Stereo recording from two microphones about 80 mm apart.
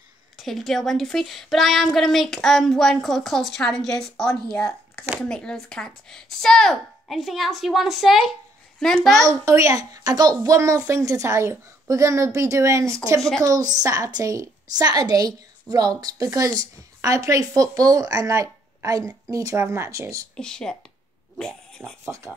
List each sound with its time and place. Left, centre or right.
0.4 s speech: centre
8.7 s a child's voice: centre
9.2 s a woman's voice: right
13.4 s a woman's voice: right
19.6 s a woman's voice: right
20.3 s a child's voice: centre
21.4 s dog: centre